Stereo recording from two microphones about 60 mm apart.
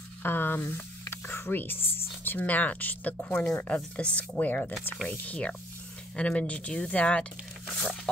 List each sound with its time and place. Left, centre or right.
0.2 s speech: left
3.4 s speech: centre